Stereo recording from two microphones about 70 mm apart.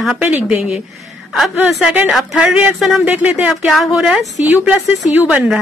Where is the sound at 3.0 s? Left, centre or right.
Right.